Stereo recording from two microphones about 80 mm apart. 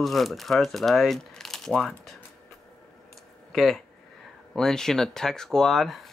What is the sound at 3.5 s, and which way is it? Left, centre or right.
Speech, centre.